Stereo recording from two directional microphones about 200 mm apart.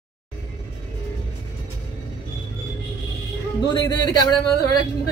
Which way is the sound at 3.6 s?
20° left (ahead or behind).